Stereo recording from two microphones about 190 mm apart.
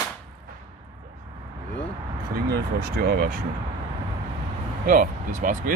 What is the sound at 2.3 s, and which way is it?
Speech, 55° right (ahead or behind).